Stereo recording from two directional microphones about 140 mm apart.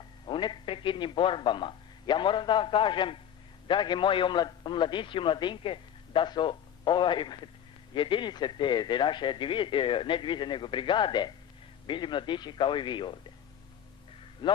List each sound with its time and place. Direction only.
0.2 s a man's voice: 35° left (ahead or behind)
14.4 s a man's voice: 30° left (ahead or behind)